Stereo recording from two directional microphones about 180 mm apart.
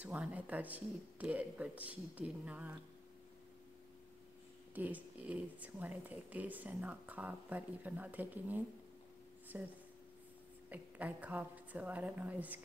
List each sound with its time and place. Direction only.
0.0 s speech: 10° right (ahead or behind)
4.7 s speech: 10° right (ahead or behind)